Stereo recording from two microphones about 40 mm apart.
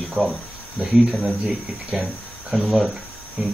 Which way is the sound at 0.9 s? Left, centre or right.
Centre.